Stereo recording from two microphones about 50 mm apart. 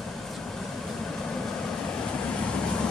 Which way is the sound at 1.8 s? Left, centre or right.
Left.